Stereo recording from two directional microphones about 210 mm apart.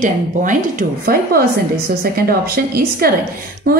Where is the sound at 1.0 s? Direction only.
45° right (ahead or behind).